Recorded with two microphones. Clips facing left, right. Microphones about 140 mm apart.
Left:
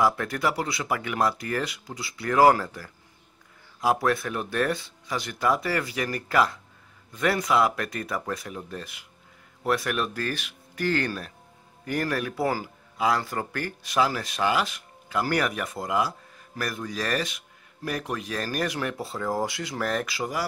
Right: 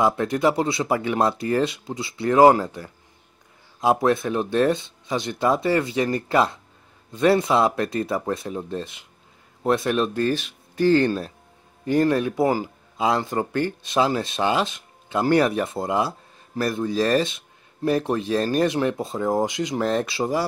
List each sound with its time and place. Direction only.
0.0 s a man's voice: 25° right (ahead or behind)